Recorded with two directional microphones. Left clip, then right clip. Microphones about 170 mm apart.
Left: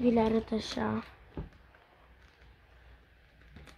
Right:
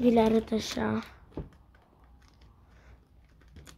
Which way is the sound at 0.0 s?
20° right (ahead or behind).